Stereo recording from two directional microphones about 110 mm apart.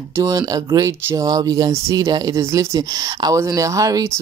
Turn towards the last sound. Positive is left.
turn(degrees=-30)  # may be behind; listen again after turning